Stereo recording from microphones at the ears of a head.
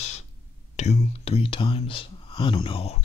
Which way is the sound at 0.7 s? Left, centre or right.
Left.